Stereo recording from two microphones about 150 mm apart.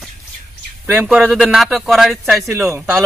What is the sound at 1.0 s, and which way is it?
Speech, centre (ahead or behind).